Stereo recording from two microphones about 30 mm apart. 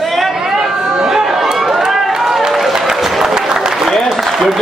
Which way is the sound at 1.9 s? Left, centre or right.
Centre.